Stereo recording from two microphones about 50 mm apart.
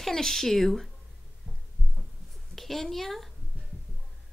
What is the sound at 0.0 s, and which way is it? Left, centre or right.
Speech, centre.